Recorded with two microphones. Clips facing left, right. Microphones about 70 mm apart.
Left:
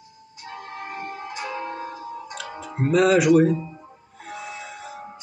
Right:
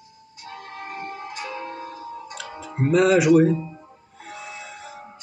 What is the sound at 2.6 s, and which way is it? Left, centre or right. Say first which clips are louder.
Speech: even; centre.